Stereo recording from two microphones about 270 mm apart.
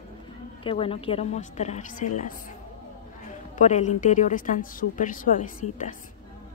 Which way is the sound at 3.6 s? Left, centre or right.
Left.